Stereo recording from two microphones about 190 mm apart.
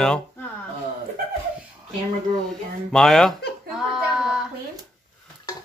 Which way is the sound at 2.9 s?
5° left (ahead or behind).